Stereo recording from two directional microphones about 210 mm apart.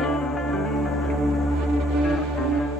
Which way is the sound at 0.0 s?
Centre (ahead or behind).